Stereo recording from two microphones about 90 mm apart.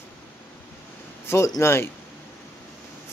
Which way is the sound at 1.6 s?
30° left (ahead or behind).